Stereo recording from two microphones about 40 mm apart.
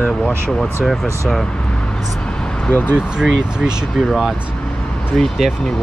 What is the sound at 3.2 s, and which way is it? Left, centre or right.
Speech, centre.